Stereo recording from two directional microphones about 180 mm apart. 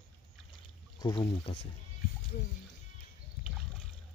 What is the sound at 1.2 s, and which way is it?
Speech, 35° left (ahead or behind).